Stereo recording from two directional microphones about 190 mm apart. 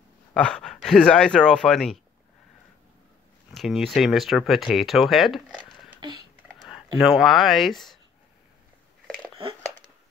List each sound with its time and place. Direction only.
0.3 s speech: 5° left (ahead or behind)
3.5 s speech: centre (ahead or behind)
6.0 s speech: 20° right (ahead or behind)
7.0 s speech: centre (ahead or behind)